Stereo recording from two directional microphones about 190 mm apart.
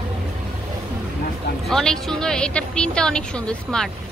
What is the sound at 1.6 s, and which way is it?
A woman's voice, centre (ahead or behind).